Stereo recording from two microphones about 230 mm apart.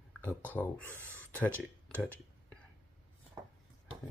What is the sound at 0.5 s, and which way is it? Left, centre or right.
Speech, centre.